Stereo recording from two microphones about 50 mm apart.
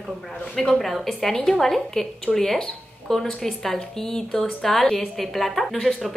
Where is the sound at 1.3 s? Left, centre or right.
Centre.